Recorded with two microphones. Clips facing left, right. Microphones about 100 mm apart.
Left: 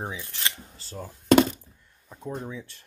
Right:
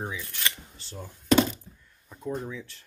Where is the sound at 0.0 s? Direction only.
25° left (ahead or behind).